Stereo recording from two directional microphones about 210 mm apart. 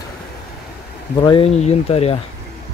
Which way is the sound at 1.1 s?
25° left (ahead or behind).